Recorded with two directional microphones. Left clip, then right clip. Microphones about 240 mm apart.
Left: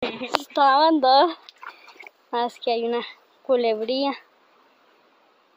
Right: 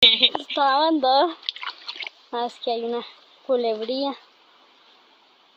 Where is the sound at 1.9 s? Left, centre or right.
Centre.